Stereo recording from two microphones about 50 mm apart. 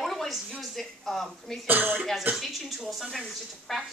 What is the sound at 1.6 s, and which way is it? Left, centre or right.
Speech, right.